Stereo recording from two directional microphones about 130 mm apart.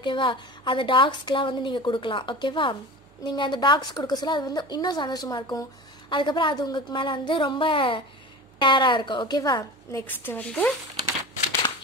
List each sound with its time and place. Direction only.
0.0 s a woman's voice: 40° left (ahead or behind)
9.9 s a woman's voice: 15° left (ahead or behind)